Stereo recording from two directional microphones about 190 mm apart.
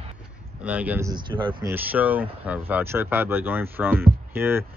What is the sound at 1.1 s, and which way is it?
Speech, 25° right (ahead or behind).